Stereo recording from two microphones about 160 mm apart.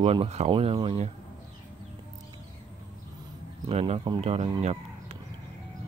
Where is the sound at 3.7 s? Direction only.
35° right (ahead or behind).